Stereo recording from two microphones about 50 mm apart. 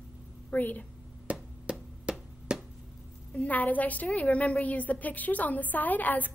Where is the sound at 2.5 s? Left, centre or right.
Centre.